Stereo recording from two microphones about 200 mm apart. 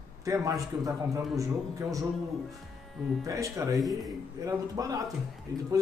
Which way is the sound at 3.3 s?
15° right (ahead or behind).